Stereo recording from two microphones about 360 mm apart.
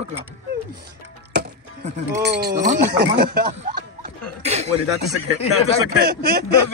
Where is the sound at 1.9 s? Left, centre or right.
Right.